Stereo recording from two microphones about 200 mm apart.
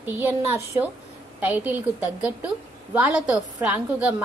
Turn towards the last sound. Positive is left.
turn(degrees=-5)  # may be behind; listen again after turning